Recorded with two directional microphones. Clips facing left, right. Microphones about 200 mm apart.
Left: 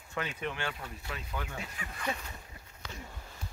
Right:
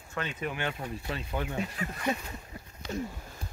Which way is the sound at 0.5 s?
20° right (ahead or behind).